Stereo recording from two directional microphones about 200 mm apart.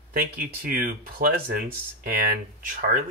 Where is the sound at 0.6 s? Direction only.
45° right (ahead or behind).